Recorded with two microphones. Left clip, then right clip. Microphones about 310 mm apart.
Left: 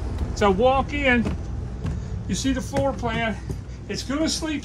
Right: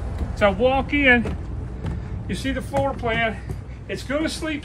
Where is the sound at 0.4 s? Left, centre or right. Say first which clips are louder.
Even; centre.